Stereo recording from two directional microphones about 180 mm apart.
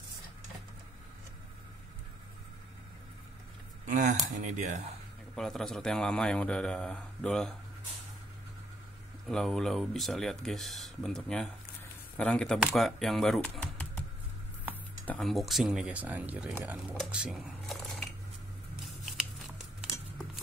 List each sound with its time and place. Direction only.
3.8 s a sound: 45° right (ahead or behind)
4.3 s speech: 40° right (ahead or behind)
5.3 s speech: 5° left (ahead or behind)
9.3 s speech: centre (ahead or behind)
15.0 s speech: centre (ahead or behind)